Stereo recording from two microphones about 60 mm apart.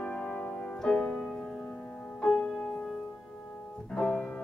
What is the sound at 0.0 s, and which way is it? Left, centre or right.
Music, left.